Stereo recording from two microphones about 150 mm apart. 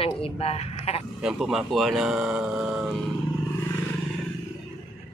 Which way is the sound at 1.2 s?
5° right (ahead or behind).